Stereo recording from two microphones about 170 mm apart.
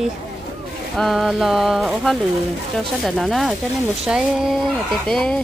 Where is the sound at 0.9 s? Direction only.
Centre (ahead or behind).